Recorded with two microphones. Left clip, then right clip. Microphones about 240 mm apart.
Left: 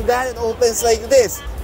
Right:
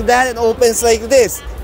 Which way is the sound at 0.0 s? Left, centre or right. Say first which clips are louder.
Right 6 dB; right.